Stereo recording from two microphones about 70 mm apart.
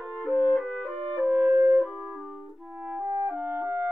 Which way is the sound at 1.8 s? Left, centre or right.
Centre.